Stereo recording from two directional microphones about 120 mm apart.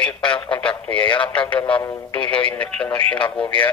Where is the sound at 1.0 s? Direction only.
45° left (ahead or behind).